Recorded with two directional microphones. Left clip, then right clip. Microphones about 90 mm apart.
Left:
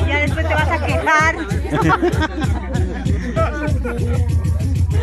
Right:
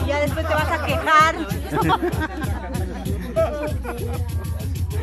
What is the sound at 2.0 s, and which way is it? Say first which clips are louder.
Speech: left 6 dB; 5° right (ahead or behind).